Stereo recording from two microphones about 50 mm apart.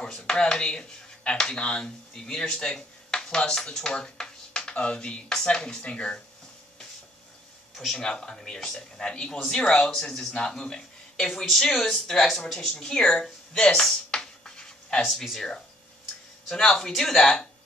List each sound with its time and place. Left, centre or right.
0.0 s speech: centre
7.9 s speech: centre
13.5 s a sound: centre
15.0 s speech: centre
17.2 s speech: left